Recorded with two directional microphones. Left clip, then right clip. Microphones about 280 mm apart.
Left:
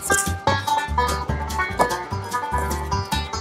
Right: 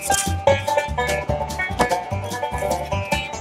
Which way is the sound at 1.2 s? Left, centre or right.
Centre.